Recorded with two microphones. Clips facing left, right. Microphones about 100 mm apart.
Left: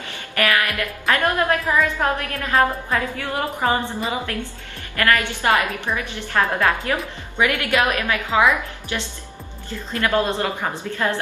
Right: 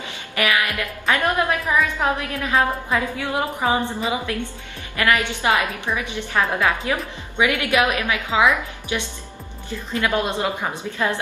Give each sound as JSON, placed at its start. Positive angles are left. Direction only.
{"t": 0.4, "sound": "music", "side_deg": -20}
{"t": 1.1, "sound": "a woman's voice", "side_deg": -15}
{"t": 4.9, "sound": "a woman's voice", "side_deg": -15}